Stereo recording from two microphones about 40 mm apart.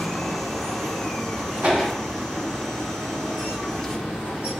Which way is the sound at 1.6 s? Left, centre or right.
Right.